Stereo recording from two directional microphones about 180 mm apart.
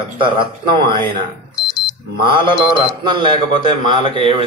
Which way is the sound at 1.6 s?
25° left (ahead or behind).